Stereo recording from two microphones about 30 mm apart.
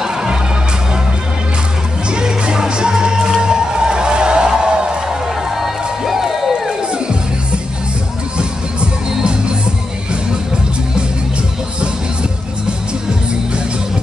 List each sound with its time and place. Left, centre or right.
0.0 s music: right
2.0 s music: right
5.6 s music: centre
9.2 s music: right